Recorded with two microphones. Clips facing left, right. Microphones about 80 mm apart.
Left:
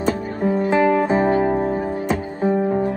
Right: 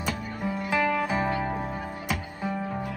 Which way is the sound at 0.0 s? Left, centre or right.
Left.